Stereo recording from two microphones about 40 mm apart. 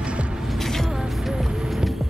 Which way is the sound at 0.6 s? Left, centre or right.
Centre.